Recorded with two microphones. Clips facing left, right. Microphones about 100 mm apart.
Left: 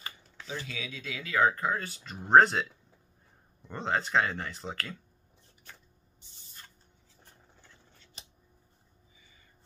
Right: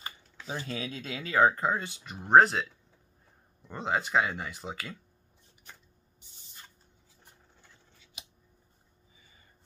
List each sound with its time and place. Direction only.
0.7 s speech: 45° right (ahead or behind); by 2.1 s 20° right (ahead or behind)
2.1 s speech: 5° right (ahead or behind)
8.0 s scissors: 10° right (ahead or behind)